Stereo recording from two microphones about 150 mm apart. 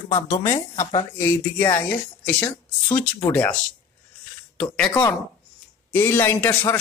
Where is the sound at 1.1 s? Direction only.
15° left (ahead or behind).